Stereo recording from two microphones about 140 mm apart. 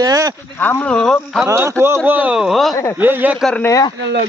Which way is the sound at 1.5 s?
25° right (ahead or behind).